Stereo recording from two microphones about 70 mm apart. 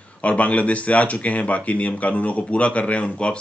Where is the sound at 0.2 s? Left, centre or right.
Centre.